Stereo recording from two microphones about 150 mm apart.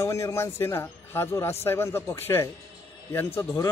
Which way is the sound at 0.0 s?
20° left (ahead or behind).